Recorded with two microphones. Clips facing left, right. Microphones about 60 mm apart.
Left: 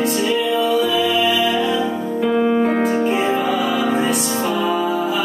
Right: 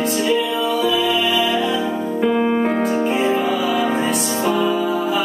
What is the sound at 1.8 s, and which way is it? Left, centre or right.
Keyboard, centre.